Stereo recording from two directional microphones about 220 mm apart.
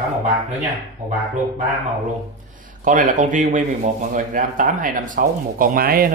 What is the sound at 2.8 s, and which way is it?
Speech, 35° right (ahead or behind).